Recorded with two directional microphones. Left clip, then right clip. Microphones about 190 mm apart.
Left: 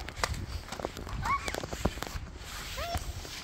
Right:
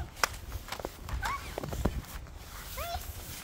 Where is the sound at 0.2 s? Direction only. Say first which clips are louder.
Right 3 dB; 20° right (ahead or behind).